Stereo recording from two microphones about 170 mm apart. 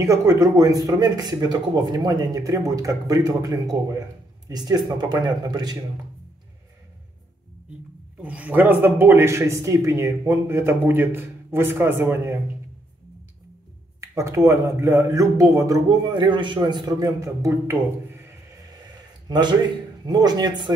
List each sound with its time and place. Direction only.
0.0 s speech: 20° right (ahead or behind)
8.2 s speech: 10° right (ahead or behind)
14.1 s speech: 15° right (ahead or behind)
19.2 s a man's voice: 25° right (ahead or behind)